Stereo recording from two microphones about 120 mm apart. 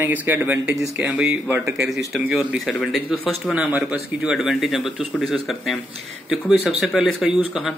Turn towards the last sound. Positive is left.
turn(degrees=0)  # may be behind; listen again after turning